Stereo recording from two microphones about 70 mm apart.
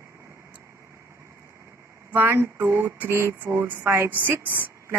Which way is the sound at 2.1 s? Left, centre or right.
Right.